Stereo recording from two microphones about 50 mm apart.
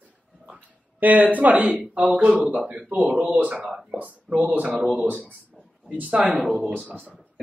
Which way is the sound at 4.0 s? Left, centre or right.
Right.